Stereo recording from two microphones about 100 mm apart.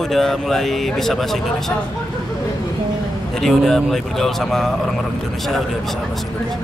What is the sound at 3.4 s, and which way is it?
Speech, 5° left (ahead or behind).